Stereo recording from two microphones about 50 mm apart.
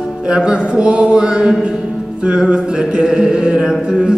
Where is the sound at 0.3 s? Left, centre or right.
Centre.